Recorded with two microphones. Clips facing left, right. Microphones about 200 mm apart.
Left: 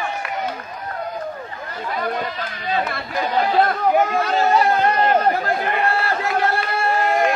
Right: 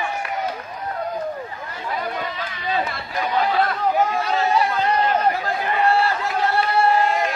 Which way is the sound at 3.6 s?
50° left (ahead or behind).